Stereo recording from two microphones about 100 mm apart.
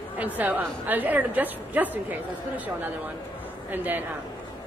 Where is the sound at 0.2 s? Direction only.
15° right (ahead or behind).